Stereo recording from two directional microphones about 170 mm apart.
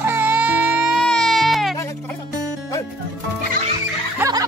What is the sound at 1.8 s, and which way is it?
Music, 15° left (ahead or behind).